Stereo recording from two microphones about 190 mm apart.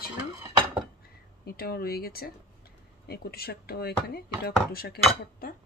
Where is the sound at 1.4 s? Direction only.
55° left (ahead or behind).